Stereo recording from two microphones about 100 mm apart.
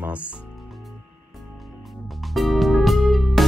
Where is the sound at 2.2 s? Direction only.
Centre (ahead or behind).